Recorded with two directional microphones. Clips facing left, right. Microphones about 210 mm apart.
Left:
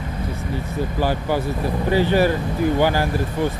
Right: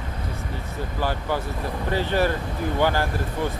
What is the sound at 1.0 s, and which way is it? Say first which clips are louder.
Speech: left 4 dB; 10° left (ahead or behind).